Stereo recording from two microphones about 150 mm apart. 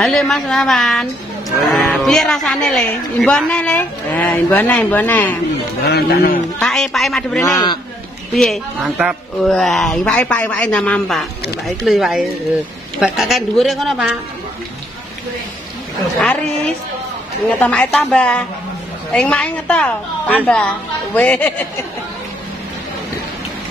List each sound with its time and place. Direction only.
0.0 s speech: 5° left (ahead or behind)
5.9 s a man's voice: 90° left
6.6 s speech: centre (ahead or behind)
7.4 s a man's voice: 25° left (ahead or behind)
8.4 s speech: centre (ahead or behind)
17.6 s a woman's voice: 10° left (ahead or behind)